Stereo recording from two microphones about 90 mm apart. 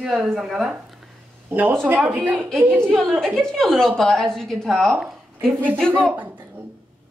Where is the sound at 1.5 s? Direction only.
20° right (ahead or behind).